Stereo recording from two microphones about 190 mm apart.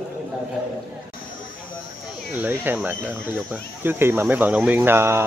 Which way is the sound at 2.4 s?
10° right (ahead or behind).